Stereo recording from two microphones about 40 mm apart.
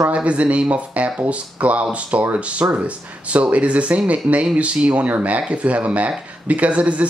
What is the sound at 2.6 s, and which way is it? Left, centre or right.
Speech, right.